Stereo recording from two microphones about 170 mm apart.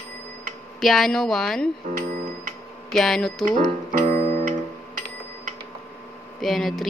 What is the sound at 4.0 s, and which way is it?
Music, 35° right (ahead or behind).